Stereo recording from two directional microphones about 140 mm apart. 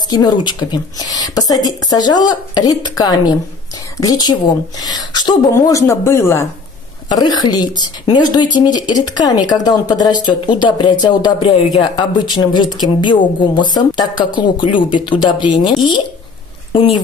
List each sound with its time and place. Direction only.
0.1 s speech: 30° left (ahead or behind)
7.1 s speech: 30° left (ahead or behind)